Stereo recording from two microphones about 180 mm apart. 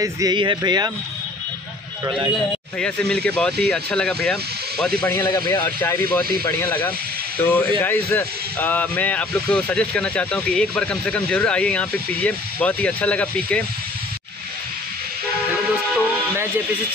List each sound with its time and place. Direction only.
0.0 s speech: 20° right (ahead or behind)
2.8 s speech: 5° left (ahead or behind)
5.1 s speech: 20° left (ahead or behind)
7.4 s speech: 15° left (ahead or behind)